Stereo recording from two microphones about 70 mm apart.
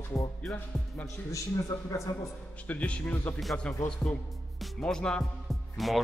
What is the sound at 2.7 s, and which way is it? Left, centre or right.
A man's voice, centre.